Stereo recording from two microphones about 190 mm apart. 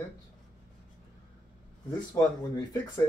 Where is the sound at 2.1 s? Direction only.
20° left (ahead or behind).